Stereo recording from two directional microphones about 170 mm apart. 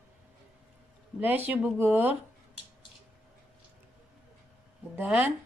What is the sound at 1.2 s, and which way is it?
Speech, 10° right (ahead or behind).